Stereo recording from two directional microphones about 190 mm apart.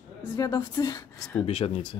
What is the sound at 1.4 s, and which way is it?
Speech, 30° left (ahead or behind).